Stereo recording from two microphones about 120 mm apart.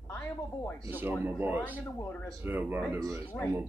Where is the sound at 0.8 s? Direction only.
15° right (ahead or behind).